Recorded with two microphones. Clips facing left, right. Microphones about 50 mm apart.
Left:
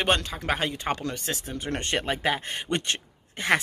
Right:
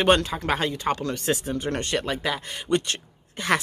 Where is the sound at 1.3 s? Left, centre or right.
Centre.